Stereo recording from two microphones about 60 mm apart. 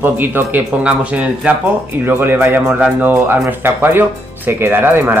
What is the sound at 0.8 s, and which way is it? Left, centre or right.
Speech, right.